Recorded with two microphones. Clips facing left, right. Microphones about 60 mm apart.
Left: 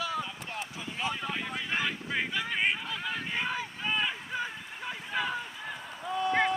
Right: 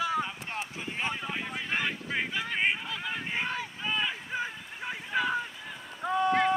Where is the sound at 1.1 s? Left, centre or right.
Centre.